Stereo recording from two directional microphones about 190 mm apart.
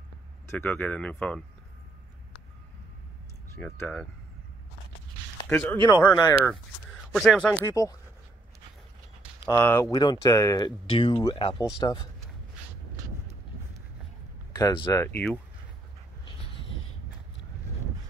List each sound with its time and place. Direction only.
0.5 s speech: 10° left (ahead or behind)
3.5 s speech: 5° left (ahead or behind)
5.5 s speech: 5° left (ahead or behind)
7.1 s speech: centre (ahead or behind)
7.8 s speech: 15° left (ahead or behind)
9.6 s speech: 10° left (ahead or behind)
14.5 s speech: 25° left (ahead or behind)